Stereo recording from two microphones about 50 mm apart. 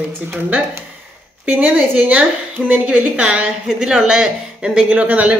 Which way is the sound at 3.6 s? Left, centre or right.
Centre.